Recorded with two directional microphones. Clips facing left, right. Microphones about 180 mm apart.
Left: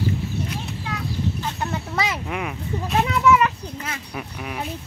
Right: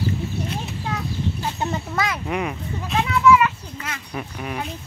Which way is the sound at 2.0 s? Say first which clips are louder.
Right 1 dB; centre (ahead or behind).